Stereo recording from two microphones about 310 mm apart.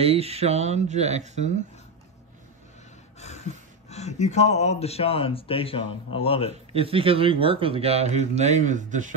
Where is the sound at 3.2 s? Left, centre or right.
Left.